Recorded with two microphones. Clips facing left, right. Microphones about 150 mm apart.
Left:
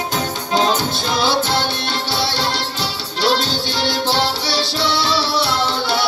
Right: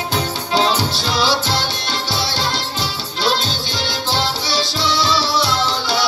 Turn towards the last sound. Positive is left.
turn(degrees=60)  # may be behind; listen again after turning